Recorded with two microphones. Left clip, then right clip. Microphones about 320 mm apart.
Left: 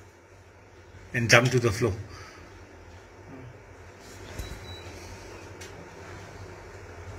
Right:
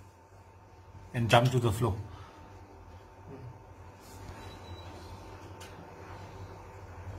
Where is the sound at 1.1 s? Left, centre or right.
Centre.